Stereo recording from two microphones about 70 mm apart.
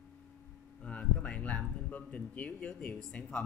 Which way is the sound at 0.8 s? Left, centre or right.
Centre.